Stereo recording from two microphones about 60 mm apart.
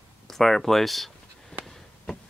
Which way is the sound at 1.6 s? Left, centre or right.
Centre.